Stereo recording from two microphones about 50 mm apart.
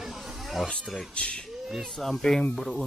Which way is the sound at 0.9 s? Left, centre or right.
Left.